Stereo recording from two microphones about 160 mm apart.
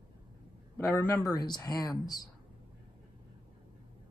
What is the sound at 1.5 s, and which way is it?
Speech, 25° left (ahead or behind).